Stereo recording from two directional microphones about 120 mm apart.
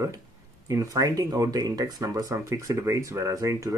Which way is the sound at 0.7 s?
30° right (ahead or behind).